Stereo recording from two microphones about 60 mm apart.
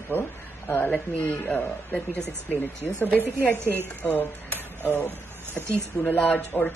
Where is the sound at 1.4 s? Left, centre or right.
Centre.